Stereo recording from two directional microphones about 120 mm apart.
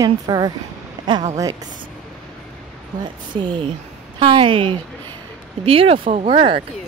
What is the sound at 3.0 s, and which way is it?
A woman's voice, 40° right (ahead or behind).